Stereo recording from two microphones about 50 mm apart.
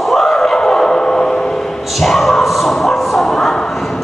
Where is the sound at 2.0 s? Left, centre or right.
Centre.